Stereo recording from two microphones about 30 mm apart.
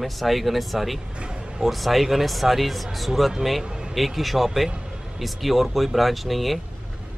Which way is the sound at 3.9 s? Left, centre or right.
Centre.